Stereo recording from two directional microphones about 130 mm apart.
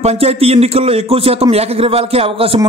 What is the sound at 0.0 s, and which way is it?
A man's voice, 55° right (ahead or behind).